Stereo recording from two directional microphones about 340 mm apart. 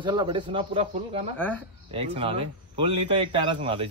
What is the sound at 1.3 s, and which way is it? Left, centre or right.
Speech, centre.